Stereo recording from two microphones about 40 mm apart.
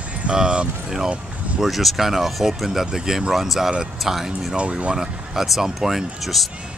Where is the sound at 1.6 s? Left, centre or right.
Centre.